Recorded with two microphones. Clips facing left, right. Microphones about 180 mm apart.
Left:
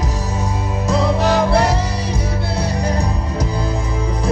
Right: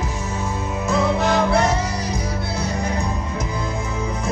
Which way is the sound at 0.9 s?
35° left (ahead or behind).